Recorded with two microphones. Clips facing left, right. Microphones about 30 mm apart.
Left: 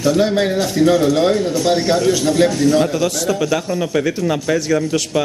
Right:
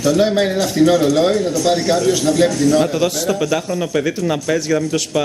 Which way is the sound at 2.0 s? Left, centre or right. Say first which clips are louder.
Even; centre.